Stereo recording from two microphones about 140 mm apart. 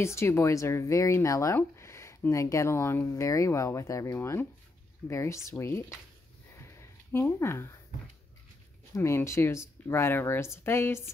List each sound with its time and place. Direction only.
0.0 s speech: 20° left (ahead or behind)
6.5 s a sound: 20° left (ahead or behind)
8.9 s speech: 20° left (ahead or behind)